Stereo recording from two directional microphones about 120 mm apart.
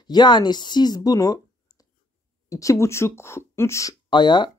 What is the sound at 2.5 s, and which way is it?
Speech, 25° left (ahead or behind).